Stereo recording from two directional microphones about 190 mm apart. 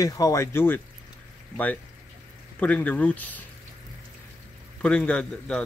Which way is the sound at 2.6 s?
10° left (ahead or behind).